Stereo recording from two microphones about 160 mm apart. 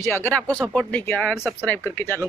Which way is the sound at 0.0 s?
15° left (ahead or behind).